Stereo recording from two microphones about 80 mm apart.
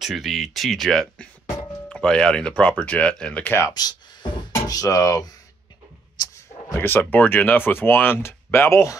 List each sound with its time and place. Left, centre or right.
0.0 s speech: centre
3.4 s speech: left
3.7 s a sound: left
6.8 s speech: left